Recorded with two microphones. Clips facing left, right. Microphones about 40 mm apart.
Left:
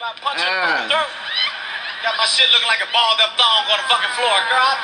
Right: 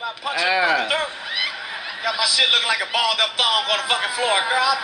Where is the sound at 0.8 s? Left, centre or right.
Left.